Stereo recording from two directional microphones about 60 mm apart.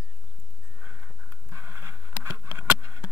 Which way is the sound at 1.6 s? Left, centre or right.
Right.